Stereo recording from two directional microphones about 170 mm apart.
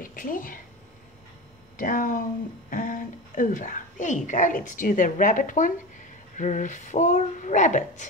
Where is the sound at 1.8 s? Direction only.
50° left (ahead or behind).